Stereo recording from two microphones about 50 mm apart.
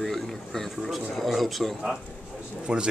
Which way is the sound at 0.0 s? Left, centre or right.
Centre.